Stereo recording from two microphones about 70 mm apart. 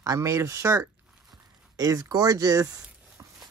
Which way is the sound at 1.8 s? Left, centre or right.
Right.